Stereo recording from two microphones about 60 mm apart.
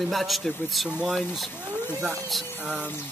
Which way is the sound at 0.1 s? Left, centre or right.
Centre.